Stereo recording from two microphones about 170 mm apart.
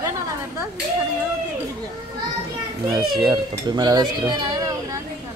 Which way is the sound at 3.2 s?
25° right (ahead or behind).